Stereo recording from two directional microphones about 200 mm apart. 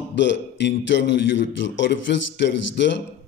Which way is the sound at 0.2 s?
60° left (ahead or behind).